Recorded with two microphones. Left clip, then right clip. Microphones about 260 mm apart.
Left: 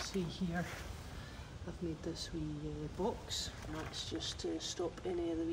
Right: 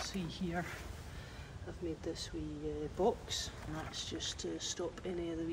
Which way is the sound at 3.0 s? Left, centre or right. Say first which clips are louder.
Right 4 dB; centre.